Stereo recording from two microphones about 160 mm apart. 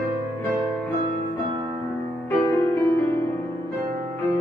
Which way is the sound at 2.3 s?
10° left (ahead or behind).